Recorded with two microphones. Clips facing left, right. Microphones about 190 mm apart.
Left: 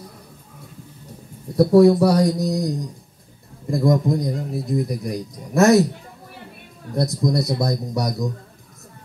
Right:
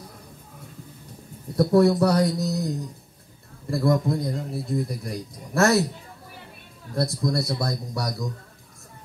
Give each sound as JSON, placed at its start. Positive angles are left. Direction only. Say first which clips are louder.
{"t": 1.5, "sound": "a man's voice", "louder": "left 5 dB", "side_deg": 10}
{"t": 7.0, "sound": "a man's voice", "louder": "left 4 dB", "side_deg": 20}